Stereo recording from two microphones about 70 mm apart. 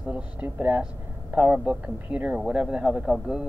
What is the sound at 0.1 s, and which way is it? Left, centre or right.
Speech, right.